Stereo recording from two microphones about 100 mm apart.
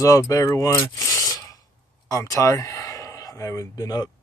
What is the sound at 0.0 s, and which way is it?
Speech, 35° left (ahead or behind).